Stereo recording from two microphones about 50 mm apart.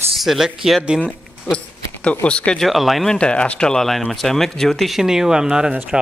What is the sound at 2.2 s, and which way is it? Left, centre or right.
Speech, left.